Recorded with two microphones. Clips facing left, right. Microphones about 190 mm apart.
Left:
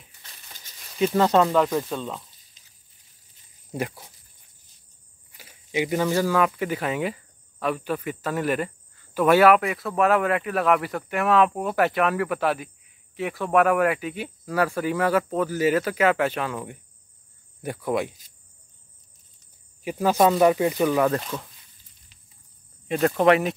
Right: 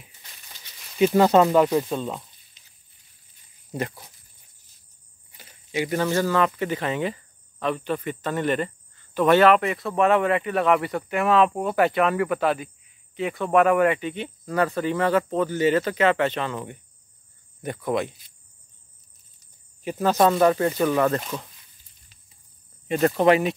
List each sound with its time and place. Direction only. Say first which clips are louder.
0.9 s speech: right 3 dB; 5° right (ahead or behind)
2.6 s a sound: even; 40° left (ahead or behind)
3.7 s speech: even; 10° left (ahead or behind)
5.4 s speech: left 1 dB; 10° left (ahead or behind)
19.8 s speech: even; 10° left (ahead or behind)
22.8 s speech: even; centre (ahead or behind)